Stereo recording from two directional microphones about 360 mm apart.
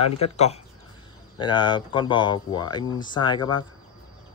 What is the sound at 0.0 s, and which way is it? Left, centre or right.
Speech, centre.